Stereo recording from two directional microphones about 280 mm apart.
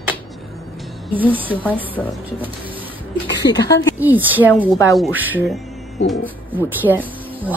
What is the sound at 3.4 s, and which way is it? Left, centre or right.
Speech, centre.